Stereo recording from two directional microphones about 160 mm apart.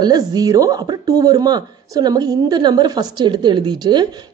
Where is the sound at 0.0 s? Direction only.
25° right (ahead or behind).